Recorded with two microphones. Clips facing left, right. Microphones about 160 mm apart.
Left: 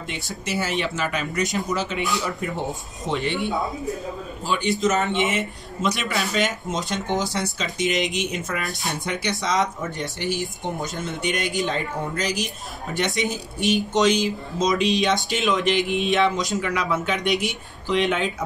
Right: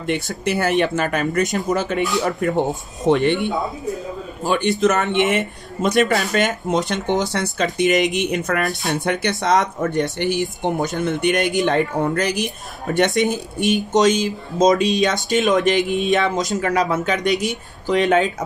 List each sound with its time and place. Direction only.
0.5 s speech: 55° right (ahead or behind)
4.5 s speech: 60° right (ahead or behind)
5.8 s speech: 50° right (ahead or behind)